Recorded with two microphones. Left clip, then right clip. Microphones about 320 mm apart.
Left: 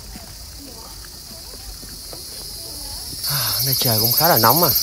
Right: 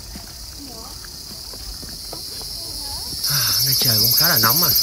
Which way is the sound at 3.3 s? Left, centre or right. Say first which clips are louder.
Right 3 dB; centre.